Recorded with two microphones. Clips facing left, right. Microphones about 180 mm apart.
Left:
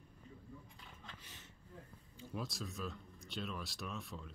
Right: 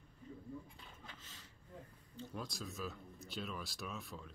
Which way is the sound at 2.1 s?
Centre (ahead or behind).